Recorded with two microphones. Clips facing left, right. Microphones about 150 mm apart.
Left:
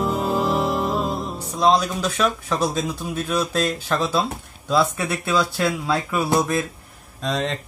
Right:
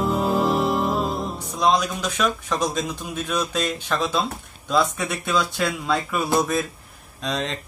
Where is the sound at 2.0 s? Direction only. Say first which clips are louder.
Left 2 dB; 5° left (ahead or behind).